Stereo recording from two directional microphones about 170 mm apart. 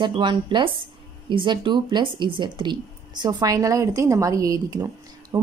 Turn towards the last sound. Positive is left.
turn(degrees=-20)  # may be behind; listen again after turning